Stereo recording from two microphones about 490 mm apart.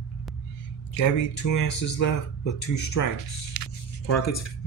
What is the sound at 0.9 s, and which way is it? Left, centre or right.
Speech, left.